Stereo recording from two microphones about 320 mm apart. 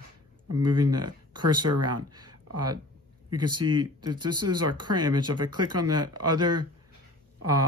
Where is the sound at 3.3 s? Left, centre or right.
Right.